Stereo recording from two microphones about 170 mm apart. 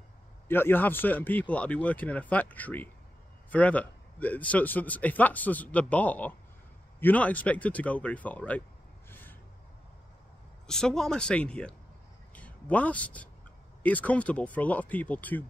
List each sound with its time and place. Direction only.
0.5 s a man's voice: 10° left (ahead or behind)
10.7 s a man's voice: 5° left (ahead or behind)